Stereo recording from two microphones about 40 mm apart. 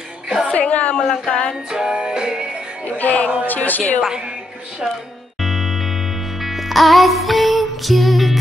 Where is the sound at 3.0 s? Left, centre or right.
Left.